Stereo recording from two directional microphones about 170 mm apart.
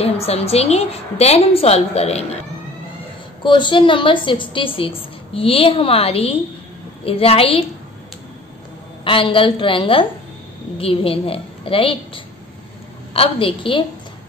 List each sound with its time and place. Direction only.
0.0 s a woman's voice: 35° left (ahead or behind)
3.4 s a woman's voice: 30° left (ahead or behind)
9.0 s a woman's voice: 30° left (ahead or behind)